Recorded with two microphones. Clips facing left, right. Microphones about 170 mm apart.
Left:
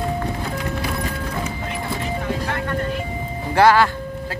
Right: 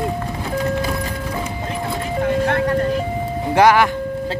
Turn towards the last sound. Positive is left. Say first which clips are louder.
# right 1 dB
turn(degrees=-15)  # may be behind; listen again after turning